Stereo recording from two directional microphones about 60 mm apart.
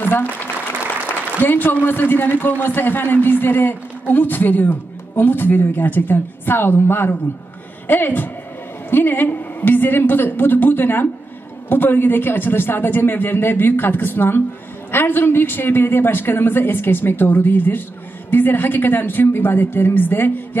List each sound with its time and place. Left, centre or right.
0.0 s applause: left
1.4 s a man's voice: left